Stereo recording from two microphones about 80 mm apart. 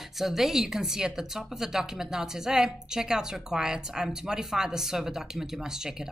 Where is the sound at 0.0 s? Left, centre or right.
Centre.